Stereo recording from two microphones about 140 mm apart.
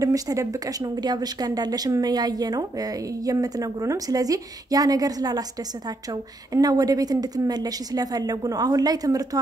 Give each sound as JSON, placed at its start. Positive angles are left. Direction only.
{"t": 0.0, "sound": "speech", "side_deg": -25}
{"t": 6.5, "sound": "speech", "side_deg": -25}